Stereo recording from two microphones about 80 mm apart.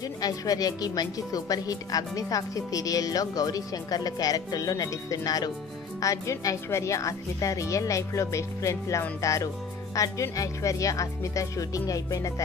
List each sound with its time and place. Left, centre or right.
0.2 s speech: left